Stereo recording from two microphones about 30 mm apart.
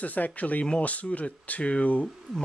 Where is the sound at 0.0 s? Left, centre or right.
Left.